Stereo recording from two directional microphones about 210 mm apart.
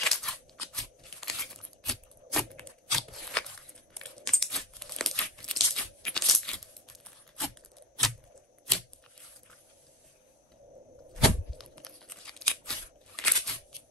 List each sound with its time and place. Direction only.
0.0 s scissors: centre (ahead or behind)
0.7 s tearing: centre (ahead or behind)
11.2 s tearing: centre (ahead or behind)